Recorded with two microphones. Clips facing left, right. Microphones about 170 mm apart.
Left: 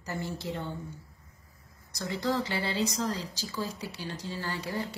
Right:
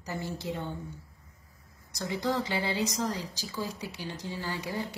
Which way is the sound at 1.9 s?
15° right (ahead or behind).